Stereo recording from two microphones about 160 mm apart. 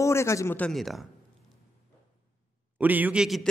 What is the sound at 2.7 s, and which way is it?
Speech, 10° right (ahead or behind).